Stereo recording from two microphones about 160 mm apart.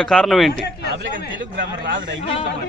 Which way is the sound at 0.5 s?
90° left.